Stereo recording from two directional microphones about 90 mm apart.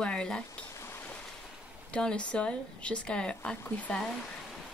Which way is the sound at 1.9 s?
10° left (ahead or behind).